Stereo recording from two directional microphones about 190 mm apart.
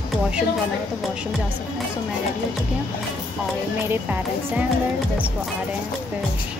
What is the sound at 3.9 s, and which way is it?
Speech, 10° right (ahead or behind).